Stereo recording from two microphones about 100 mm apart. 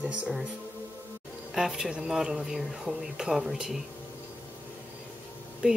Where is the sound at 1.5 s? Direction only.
5° right (ahead or behind).